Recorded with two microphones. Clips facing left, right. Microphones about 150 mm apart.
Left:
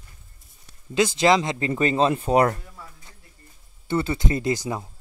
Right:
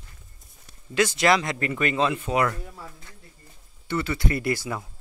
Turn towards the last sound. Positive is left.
turn(degrees=20)  # may be behind; listen again after turning